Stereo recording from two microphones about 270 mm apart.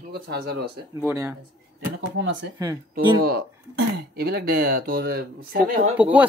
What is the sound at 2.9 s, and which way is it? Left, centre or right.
Speech, right.